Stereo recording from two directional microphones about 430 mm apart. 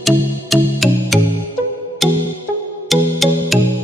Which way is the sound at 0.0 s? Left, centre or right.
Centre.